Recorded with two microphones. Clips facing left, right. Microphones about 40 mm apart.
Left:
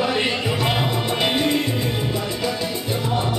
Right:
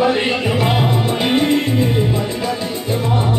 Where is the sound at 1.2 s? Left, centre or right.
Centre.